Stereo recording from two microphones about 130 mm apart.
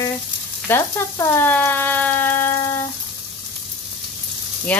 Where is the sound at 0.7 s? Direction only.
20° left (ahead or behind).